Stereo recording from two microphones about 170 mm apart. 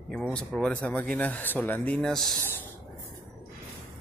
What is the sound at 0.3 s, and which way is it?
Speech, 5° left (ahead or behind).